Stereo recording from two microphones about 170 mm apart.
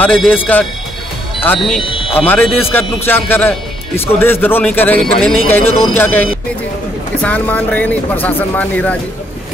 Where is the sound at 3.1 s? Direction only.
10° left (ahead or behind).